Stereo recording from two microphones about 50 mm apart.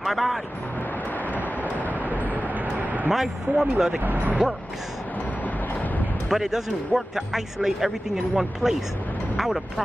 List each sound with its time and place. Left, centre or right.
0.0 s speech: centre
2.8 s vehicle: right
3.1 s speech: centre
3.7 s speech: centre
4.0 s speech: right
6.2 s speech: centre